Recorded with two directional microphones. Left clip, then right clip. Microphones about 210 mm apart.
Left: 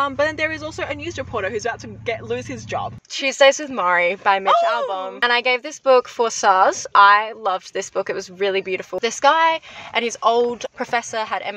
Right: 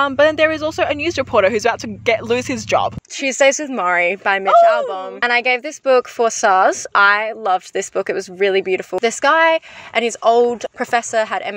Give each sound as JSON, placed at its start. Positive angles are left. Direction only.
{"t": 0.0, "sound": "speech", "side_deg": -50}
{"t": 3.2, "sound": "speech", "side_deg": -20}